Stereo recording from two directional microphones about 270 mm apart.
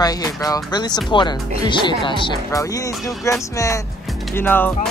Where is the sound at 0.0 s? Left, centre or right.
Centre.